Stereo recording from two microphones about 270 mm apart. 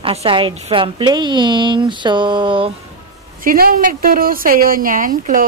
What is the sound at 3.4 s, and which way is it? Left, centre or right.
A woman's voice, right.